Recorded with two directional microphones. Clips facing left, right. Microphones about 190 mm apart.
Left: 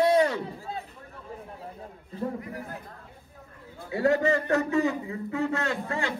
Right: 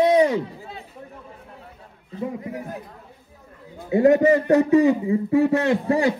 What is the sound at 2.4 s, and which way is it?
Speech, 20° right (ahead or behind).